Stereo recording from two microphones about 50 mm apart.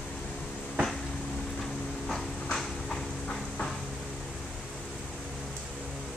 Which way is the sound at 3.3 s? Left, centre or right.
Centre.